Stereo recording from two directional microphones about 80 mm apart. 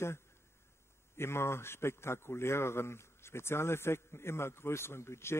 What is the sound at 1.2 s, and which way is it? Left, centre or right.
A man's voice, left.